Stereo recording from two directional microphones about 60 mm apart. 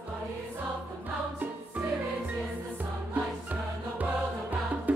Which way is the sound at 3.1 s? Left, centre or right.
Right.